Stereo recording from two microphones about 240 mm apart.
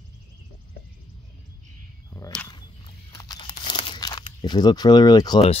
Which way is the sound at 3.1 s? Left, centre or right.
Centre.